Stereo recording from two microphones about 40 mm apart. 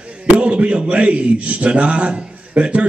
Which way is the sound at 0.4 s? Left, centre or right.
Right.